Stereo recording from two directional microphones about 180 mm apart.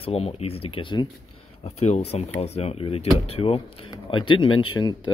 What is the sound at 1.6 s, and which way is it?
Speech, 40° left (ahead or behind).